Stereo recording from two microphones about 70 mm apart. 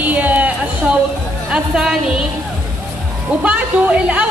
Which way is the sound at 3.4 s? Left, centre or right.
Centre.